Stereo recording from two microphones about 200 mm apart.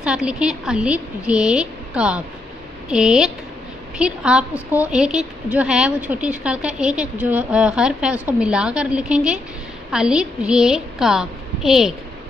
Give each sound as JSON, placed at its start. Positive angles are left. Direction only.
{"t": 0.0, "sound": "a woman's voice", "side_deg": -5}